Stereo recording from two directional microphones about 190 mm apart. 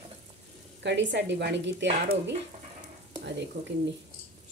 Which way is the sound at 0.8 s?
65° right (ahead or behind).